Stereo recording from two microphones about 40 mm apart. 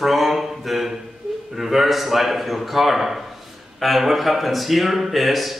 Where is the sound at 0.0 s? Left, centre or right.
Centre.